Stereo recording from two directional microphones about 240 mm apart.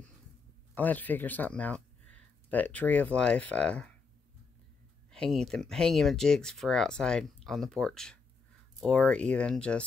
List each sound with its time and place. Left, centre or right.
0.7 s speech: centre
5.1 s speech: centre